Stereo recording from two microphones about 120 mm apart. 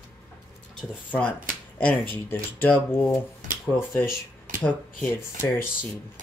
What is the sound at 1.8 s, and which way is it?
Speech, 15° left (ahead or behind).